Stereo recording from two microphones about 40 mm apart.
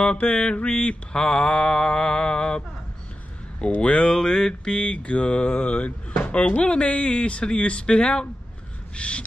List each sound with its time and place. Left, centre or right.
0.0 s mantra: left
0.8 s mantra: centre
3.7 s mantra: left
8.9 s crow: left